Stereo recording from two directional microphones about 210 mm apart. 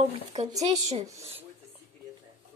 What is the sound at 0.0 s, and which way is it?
Speech, 30° right (ahead or behind).